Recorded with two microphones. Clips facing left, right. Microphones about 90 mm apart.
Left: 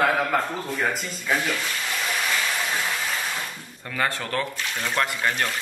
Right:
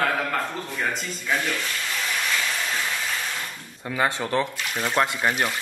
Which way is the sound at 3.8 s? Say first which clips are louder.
Right 2 dB; 15° right (ahead or behind).